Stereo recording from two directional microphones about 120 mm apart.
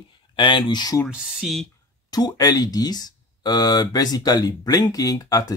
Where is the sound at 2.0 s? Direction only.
35° left (ahead or behind).